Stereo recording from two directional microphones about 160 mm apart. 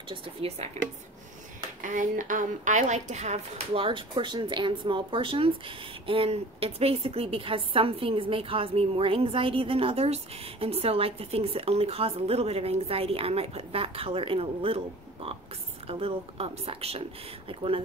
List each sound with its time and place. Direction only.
0.1 s a woman's voice: 35° right (ahead or behind)
1.8 s a woman's voice: 55° right (ahead or behind); by 14.8 s 35° right (ahead or behind)
15.9 s a woman's voice: 35° right (ahead or behind)